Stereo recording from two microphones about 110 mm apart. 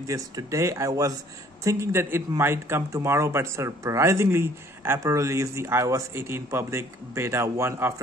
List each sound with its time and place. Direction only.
0.0 s speech: 30° right (ahead or behind)